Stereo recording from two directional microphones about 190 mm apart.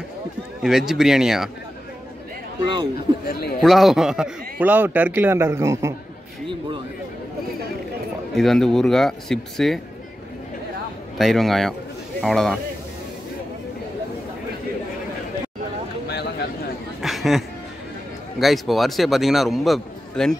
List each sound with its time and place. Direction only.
0.6 s a man's voice: 5° right (ahead or behind)
2.6 s speech: 25° right (ahead or behind)
3.3 s speech: 55° left (ahead or behind)
3.6 s a man's voice: centre (ahead or behind)
8.4 s a man's voice: centre (ahead or behind)
11.1 s a man's voice: centre (ahead or behind)
16.1 s a sound: 60° left (ahead or behind)
17.0 s a sound: centre (ahead or behind)
18.4 s a man's voice: centre (ahead or behind)